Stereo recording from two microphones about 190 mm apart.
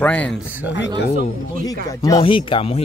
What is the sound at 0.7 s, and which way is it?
Speech, 65° left (ahead or behind).